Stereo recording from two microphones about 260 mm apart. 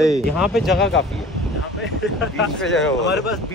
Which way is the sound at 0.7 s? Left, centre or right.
Left.